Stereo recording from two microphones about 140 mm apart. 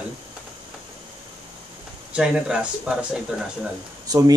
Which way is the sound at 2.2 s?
5° right (ahead or behind).